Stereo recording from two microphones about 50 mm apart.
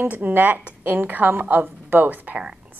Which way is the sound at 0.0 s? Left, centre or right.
Right.